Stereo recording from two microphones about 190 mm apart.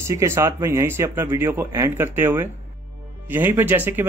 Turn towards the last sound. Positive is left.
turn(degrees=-10)  # may be behind; listen again after turning